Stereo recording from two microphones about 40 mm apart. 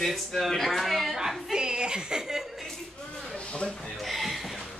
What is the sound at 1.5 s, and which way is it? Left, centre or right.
Chuckle, right.